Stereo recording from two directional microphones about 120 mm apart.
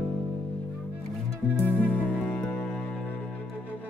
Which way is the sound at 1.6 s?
15° left (ahead or behind).